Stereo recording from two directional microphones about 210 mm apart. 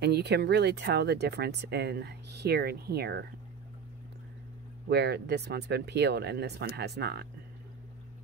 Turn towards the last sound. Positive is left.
turn(degrees=-50)  # may be behind; listen again after turning